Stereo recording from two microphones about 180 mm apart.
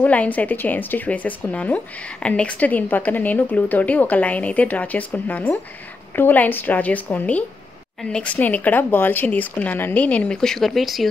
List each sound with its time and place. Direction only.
0.0 s speech: 10° left (ahead or behind)